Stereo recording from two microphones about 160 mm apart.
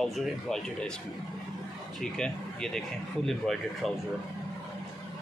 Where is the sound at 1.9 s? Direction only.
5° left (ahead or behind).